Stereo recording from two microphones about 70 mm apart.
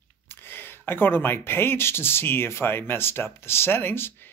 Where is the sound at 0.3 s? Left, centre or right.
Left.